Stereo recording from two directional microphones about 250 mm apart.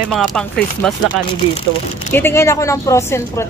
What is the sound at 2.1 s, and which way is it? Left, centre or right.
Speech, centre.